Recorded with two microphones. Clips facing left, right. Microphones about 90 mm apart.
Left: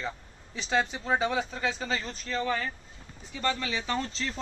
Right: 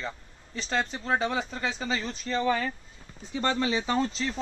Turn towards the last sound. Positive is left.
turn(degrees=-15)  # may be behind; listen again after turning